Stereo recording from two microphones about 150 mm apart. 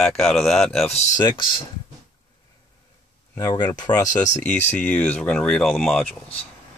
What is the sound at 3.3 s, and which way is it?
Speech, 15° left (ahead or behind).